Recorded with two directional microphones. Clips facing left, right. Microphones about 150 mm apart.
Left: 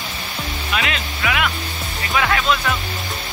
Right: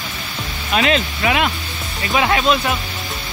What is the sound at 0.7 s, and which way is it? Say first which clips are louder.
Speech: right 8 dB; 30° right (ahead or behind).